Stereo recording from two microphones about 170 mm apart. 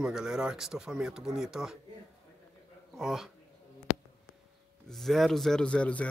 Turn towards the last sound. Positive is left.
turn(degrees=5)  # may be behind; listen again after turning